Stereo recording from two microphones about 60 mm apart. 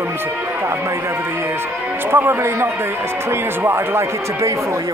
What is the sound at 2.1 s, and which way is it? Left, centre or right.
Speech, right.